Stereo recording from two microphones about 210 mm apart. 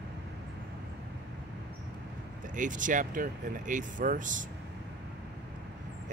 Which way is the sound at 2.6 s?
40° right (ahead or behind).